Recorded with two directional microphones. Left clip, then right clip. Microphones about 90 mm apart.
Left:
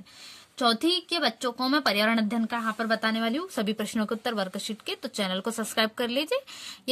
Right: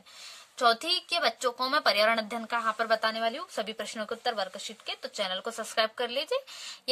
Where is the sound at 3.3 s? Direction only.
35° left (ahead or behind).